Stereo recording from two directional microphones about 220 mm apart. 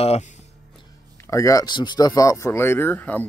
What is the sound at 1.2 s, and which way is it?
Speech, 15° left (ahead or behind).